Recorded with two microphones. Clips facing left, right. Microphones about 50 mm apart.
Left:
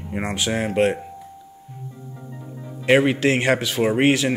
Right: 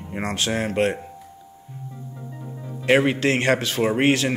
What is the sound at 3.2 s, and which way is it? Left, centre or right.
Speech, centre.